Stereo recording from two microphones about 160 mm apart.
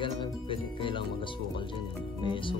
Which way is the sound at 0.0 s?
30° left (ahead or behind).